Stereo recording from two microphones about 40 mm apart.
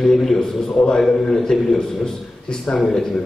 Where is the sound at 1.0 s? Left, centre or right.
Centre.